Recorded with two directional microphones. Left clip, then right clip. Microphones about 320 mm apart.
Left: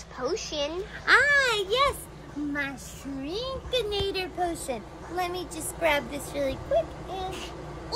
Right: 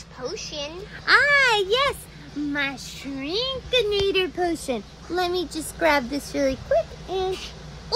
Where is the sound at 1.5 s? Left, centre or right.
Right.